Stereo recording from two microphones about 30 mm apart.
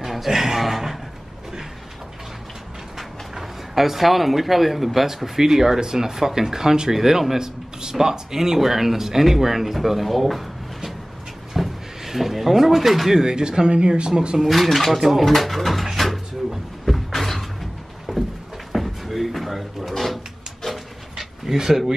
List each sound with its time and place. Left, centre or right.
0.0 s a sound: centre
0.3 s speech: centre
3.0 s speech: centre
11.5 s a sound: centre
13.1 s speech: right
14.5 s speech: centre
15.2 s speech: centre
16.0 s cupboard open or close: centre
18.1 s a sound: centre
18.7 s a sound: centre
19.9 s drawer open or close: centre
20.6 s dog: centre
21.5 s speech: centre